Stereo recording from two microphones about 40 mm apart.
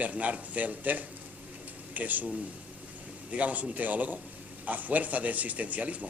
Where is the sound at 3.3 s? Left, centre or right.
Right.